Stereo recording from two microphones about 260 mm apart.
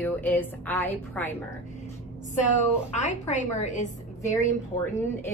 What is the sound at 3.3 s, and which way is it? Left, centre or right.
A woman's voice, left.